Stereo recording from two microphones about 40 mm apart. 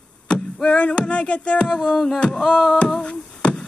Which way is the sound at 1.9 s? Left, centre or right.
Centre.